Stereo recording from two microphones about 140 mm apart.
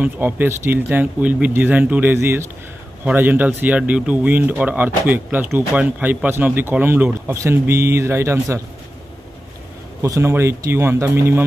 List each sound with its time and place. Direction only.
0.0 s speech: 15° right (ahead or behind)
10.0 s speech: 20° right (ahead or behind)